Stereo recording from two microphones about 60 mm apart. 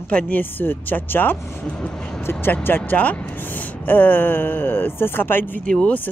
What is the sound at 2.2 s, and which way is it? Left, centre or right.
Speech, left.